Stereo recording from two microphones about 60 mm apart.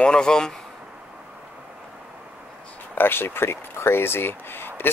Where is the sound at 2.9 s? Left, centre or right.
Left.